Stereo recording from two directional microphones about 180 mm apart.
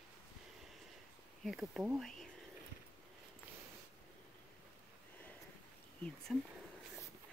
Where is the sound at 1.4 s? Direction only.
Centre (ahead or behind).